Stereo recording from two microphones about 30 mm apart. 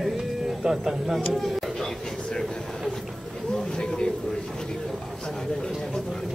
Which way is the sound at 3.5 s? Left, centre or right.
Left.